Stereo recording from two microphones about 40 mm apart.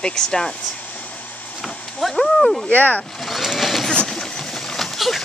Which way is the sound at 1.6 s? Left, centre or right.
Centre.